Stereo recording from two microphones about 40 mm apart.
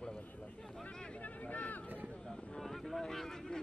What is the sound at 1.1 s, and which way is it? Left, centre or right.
Vehicle, left.